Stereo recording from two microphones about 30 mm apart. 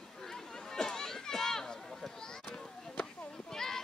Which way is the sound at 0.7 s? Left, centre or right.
Centre.